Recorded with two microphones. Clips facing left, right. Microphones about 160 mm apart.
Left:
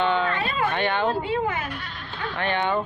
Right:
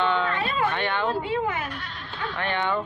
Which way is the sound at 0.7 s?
20° left (ahead or behind).